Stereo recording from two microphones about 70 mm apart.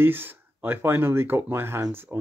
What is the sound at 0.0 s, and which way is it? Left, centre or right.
Speech, right.